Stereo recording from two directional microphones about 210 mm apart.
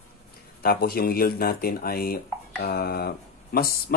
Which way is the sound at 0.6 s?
45° left (ahead or behind).